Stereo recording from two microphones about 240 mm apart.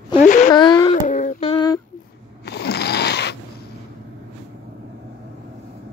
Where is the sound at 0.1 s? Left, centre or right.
Left.